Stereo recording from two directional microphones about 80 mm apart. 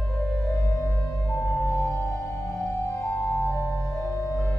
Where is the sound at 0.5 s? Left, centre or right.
Left.